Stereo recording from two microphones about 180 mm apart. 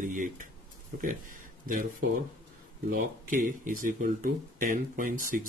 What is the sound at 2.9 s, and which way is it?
Speech, 50° right (ahead or behind).